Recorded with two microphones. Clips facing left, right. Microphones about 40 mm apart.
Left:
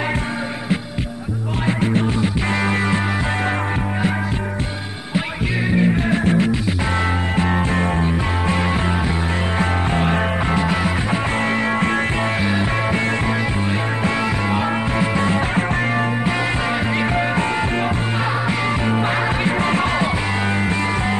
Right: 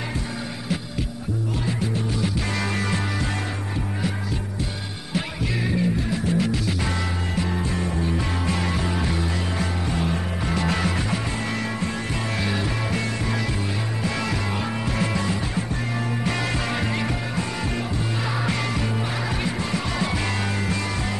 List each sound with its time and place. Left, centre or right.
1.7 s music: left
2.2 s music: left
5.8 s music: left
9.6 s music: left
10.6 s music: centre
12.4 s music: left
14.0 s music: left
16.9 s music: left
18.9 s music: left